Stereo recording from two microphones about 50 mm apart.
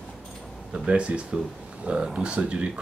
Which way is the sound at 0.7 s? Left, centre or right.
Right.